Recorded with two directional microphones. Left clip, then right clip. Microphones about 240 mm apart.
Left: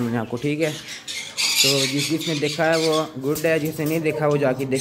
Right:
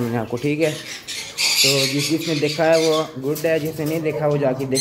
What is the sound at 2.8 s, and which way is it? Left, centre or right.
Speech, centre.